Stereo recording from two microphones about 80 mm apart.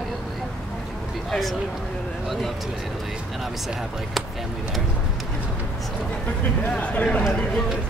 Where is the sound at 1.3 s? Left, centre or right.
Centre.